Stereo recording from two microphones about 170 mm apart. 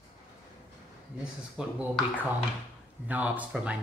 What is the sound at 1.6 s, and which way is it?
Speech, 5° right (ahead or behind).